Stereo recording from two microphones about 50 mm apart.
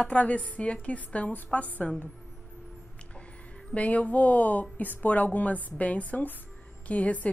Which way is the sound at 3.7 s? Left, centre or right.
Left.